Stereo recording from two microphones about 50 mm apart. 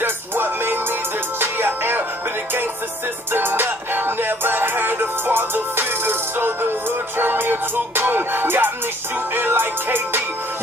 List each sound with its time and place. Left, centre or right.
0.0 s music: right
3.3 s music: right